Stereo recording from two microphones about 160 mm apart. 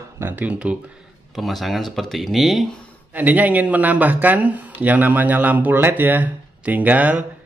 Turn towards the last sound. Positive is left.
turn(degrees=-10)  # may be behind; listen again after turning